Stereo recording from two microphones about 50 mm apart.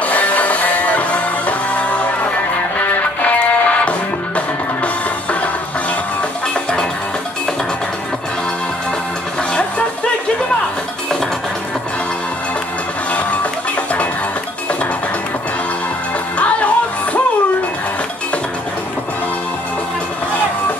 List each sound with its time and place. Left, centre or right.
0.0 s music: left
16.3 s music: left